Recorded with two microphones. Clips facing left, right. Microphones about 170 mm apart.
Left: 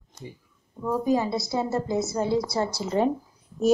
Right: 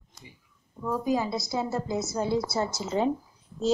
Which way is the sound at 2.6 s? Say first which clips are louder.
Left 2 dB; 35° left (ahead or behind).